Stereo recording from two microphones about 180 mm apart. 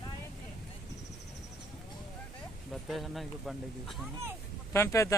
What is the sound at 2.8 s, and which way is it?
Speech, centre (ahead or behind).